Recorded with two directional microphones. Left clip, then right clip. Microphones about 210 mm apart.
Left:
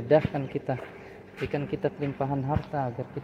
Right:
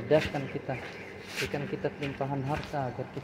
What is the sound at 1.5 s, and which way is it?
Speech, 50° left (ahead or behind).